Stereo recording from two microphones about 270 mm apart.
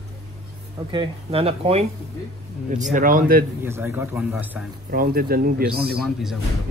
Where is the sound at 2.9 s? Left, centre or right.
Right.